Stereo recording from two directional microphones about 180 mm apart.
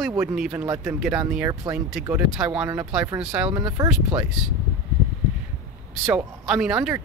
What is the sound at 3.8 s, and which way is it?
Speech, 20° right (ahead or behind).